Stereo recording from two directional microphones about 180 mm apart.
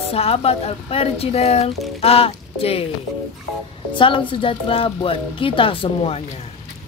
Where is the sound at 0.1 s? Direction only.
35° left (ahead or behind).